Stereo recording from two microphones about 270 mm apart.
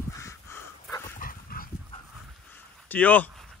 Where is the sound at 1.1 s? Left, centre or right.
Left.